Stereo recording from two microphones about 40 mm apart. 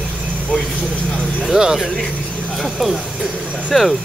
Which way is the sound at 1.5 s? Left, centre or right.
Centre.